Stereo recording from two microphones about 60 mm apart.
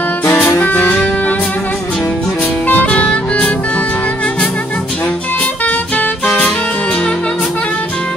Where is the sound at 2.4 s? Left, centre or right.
Left.